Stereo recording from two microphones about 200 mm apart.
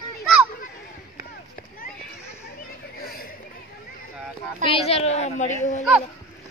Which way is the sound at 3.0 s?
50° left (ahead or behind).